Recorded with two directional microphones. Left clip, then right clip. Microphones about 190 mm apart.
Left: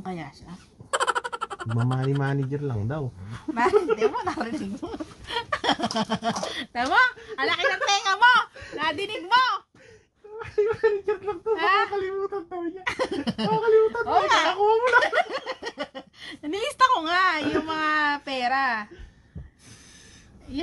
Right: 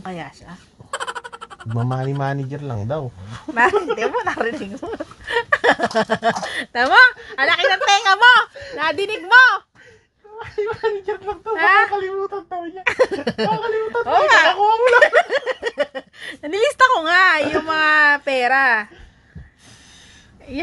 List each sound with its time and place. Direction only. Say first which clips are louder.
0.9 s a sound: left 3 dB; centre (ahead or behind)
2.1 s speech: right 4 dB; 35° right (ahead or behind)
11.1 s speech: right 2 dB; 35° right (ahead or behind)